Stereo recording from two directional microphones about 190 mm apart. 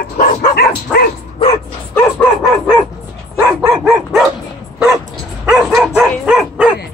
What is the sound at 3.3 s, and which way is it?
Dog, 10° right (ahead or behind).